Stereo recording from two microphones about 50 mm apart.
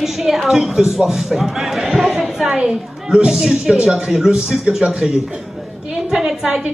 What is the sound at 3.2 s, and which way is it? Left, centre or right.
Speech, centre.